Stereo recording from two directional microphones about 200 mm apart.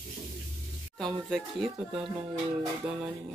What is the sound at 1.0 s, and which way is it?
Speech, centre (ahead or behind).